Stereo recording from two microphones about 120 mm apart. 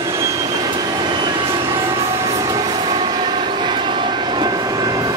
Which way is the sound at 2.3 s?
35° right (ahead or behind).